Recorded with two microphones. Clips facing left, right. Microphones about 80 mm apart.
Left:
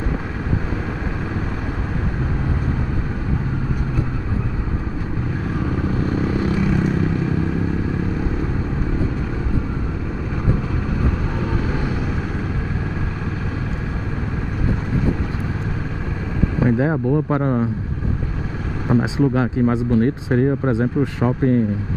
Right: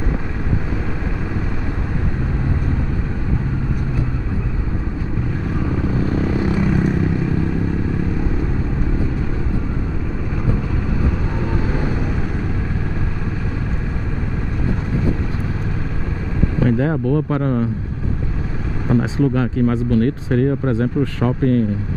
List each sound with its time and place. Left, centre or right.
16.5 s speech: centre
18.9 s speech: centre